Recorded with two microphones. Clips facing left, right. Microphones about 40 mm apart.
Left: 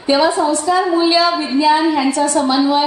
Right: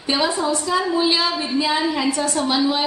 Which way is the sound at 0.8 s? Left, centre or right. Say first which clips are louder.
Left 6 dB; centre.